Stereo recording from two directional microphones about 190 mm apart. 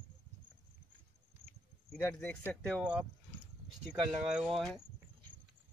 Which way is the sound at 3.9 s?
5° right (ahead or behind).